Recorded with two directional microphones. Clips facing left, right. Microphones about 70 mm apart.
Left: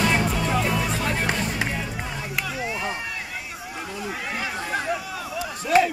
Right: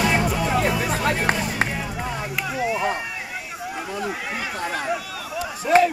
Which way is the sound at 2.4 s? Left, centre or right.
Centre.